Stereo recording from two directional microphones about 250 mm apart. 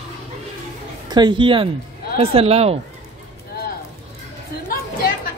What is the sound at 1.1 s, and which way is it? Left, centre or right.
Speech, centre.